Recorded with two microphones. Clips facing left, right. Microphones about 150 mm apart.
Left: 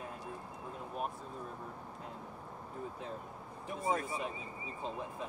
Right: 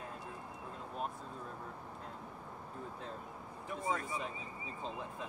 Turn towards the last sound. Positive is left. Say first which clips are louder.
# left 3 dB
turn(degrees=25)  # may be behind; listen again after turning